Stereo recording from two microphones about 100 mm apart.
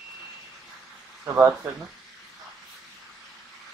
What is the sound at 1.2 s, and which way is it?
Speech, 30° right (ahead or behind).